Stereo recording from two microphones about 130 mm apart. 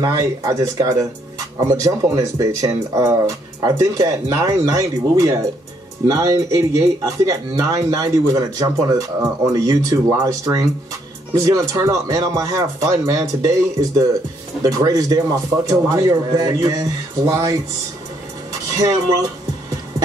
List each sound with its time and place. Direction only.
0.0 s speech: 25° right (ahead or behind)
18.5 s music: 25° right (ahead or behind)